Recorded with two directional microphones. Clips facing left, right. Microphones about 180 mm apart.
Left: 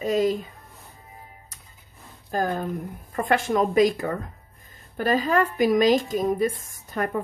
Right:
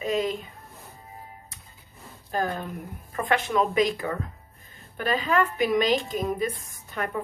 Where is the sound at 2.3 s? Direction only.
40° left (ahead or behind).